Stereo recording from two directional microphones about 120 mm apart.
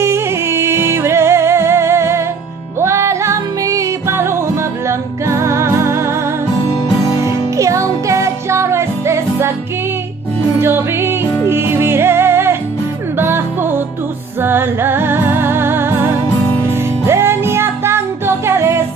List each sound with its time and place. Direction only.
0.0 s music: 20° right (ahead or behind)
7.1 s music: 30° left (ahead or behind)
7.5 s music: 25° right (ahead or behind)
10.6 s music: 20° right (ahead or behind)